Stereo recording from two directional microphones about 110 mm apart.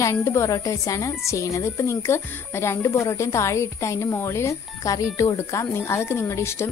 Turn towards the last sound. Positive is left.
turn(degrees=25)  # may be behind; listen again after turning